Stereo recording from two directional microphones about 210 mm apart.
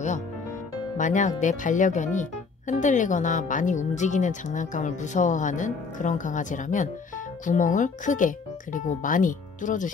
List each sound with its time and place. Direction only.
0.9 s speech: 35° left (ahead or behind)